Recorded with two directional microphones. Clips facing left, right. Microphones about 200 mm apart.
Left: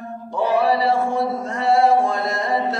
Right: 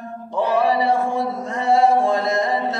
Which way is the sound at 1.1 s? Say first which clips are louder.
Left 1 dB; 15° right (ahead or behind).